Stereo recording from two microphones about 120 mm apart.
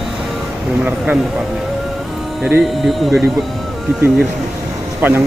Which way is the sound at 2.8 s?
Centre (ahead or behind).